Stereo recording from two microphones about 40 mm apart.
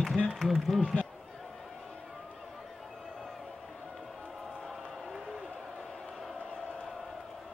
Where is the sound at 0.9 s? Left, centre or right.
Left.